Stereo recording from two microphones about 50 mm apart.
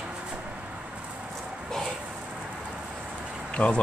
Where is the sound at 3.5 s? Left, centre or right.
Left.